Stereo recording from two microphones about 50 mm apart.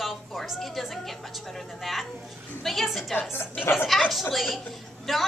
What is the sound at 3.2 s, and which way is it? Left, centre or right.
Speech, left.